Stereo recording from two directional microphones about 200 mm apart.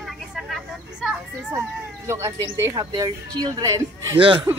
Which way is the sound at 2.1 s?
15° right (ahead or behind).